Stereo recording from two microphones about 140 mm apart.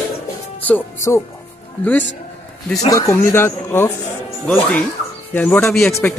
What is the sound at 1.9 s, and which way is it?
Speech, 10° left (ahead or behind).